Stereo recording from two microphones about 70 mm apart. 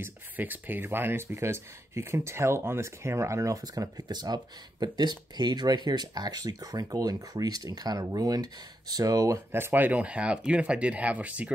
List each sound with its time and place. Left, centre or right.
0.0 s speech: right
9.5 s speech: right